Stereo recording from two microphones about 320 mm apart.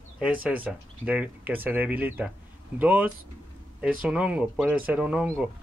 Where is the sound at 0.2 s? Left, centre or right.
Centre.